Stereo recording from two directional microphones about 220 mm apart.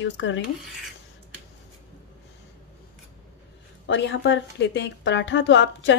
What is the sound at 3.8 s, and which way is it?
A woman's voice, 55° left (ahead or behind).